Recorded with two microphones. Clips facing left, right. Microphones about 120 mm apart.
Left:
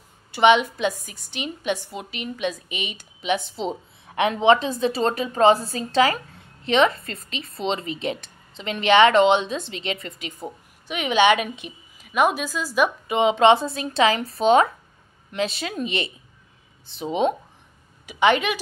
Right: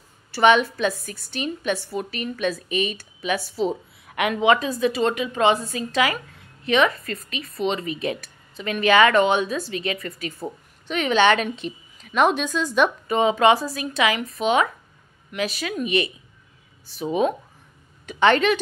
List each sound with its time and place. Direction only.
0.3 s a woman's voice: 15° left (ahead or behind)
13.2 s a woman's voice: 25° left (ahead or behind)
18.0 s a woman's voice: 10° left (ahead or behind)